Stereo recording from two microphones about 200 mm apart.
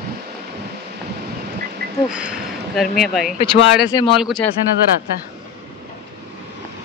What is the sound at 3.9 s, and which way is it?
Speech, 25° left (ahead or behind).